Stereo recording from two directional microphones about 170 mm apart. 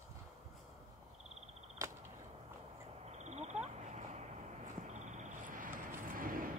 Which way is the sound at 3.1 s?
40° right (ahead or behind).